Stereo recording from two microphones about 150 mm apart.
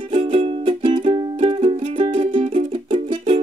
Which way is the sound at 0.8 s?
35° right (ahead or behind).